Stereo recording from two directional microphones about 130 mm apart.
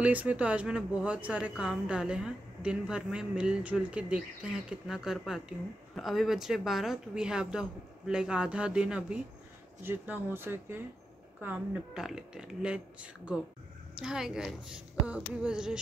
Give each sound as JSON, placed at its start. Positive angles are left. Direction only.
{"t": 0.0, "sound": "a woman's voice", "side_deg": -10}